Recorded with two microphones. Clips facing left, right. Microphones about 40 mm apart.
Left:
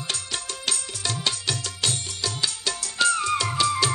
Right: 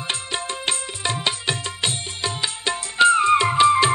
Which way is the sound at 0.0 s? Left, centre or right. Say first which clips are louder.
Right 4 dB; right.